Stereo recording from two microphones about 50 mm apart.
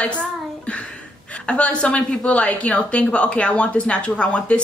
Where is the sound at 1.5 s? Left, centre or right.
Left.